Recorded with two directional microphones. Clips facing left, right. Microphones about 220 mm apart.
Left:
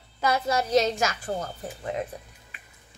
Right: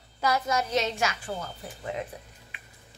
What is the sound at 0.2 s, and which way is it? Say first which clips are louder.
A woman's voice: left 2 dB; 30° left (ahead or behind).